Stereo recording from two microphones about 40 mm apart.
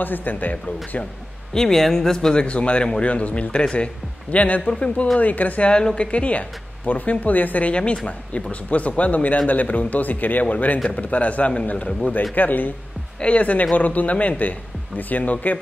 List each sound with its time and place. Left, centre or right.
0.0 s speech: left
1.5 s speech: centre
2.3 s speech: left
4.6 s a woman's voice: left
5.2 s speech: left
5.7 s a woman's voice: left
6.9 s speech: left
7.7 s a woman's voice: left
13.2 s speech: left